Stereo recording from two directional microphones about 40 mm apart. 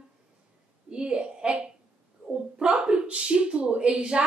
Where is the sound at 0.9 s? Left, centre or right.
Right.